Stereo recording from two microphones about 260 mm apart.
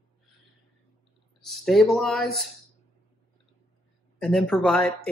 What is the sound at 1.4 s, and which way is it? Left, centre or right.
Speech, centre.